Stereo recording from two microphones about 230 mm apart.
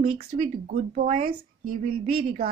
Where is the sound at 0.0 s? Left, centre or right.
Right.